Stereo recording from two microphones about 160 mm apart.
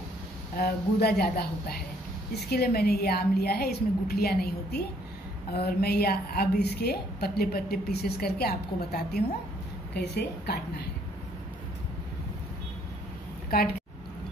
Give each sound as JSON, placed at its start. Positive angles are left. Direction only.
{"t": 0.6, "sound": "a woman's voice", "side_deg": 75}
{"t": 2.5, "sound": "a woman's voice", "side_deg": 75}
{"t": 9.9, "sound": "a woman's voice", "side_deg": 90}